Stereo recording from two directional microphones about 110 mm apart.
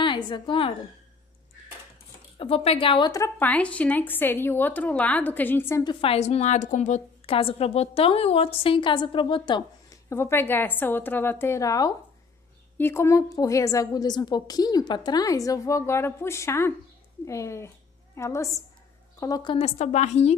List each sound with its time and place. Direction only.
0.0 s a woman's voice: 45° left (ahead or behind)
2.3 s a woman's voice: 60° left (ahead or behind)
3.3 s a woman's voice: 15° left (ahead or behind)
5.9 s a woman's voice: 70° left (ahead or behind); by 9.7 s 45° left (ahead or behind)
10.0 s a woman's voice: 25° left (ahead or behind)
19.5 s a woman's voice: 80° left